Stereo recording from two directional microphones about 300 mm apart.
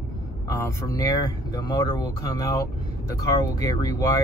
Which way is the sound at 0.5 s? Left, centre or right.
Centre.